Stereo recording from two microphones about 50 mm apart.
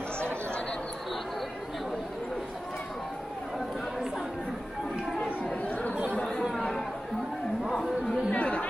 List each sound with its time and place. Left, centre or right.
5.4 s chatter: left
8.3 s chatter: left